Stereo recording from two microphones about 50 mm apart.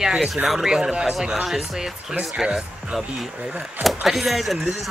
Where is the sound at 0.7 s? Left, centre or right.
Centre.